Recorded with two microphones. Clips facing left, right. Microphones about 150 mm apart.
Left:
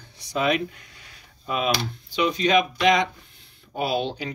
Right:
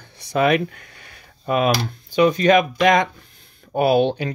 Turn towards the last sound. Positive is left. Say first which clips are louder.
# right 9 dB
turn(degrees=-60)  # may be behind; listen again after turning